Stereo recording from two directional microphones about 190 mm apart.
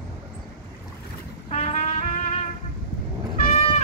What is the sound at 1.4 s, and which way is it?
Music, 35° left (ahead or behind).